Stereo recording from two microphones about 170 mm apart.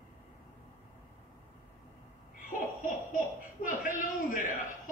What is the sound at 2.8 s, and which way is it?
Speech, 50° left (ahead or behind).